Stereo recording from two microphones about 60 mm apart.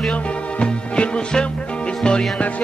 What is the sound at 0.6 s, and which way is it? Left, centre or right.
Music, centre.